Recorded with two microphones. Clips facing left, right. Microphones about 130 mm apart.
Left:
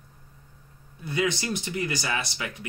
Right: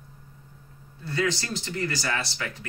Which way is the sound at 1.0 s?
15° left (ahead or behind).